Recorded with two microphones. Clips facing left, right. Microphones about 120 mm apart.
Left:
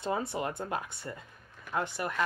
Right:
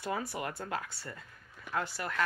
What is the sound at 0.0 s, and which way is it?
Speech, 25° left (ahead or behind).